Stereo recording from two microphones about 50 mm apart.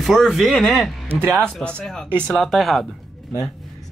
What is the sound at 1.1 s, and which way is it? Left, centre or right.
Speech, right.